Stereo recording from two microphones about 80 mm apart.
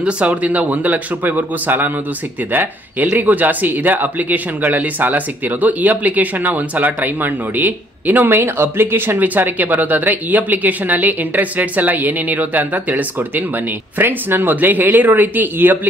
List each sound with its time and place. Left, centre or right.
0.0 s speech: centre